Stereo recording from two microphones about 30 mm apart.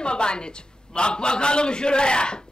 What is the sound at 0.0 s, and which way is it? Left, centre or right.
A man's voice, left.